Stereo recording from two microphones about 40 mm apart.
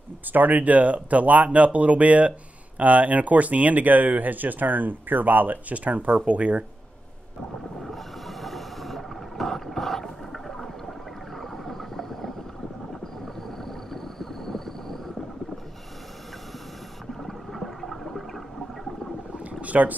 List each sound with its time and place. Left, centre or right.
0.3 s speech: right
7.8 s snort: centre
13.5 s a sound: centre
17.1 s toilet flush: centre
19.6 s speech: right